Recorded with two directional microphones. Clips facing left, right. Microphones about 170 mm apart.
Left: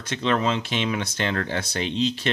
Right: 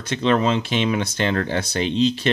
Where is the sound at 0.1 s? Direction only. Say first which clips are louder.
Right 4 dB; 25° right (ahead or behind).